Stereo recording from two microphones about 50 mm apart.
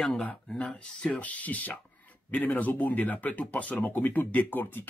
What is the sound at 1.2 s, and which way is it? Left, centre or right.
Speech, left.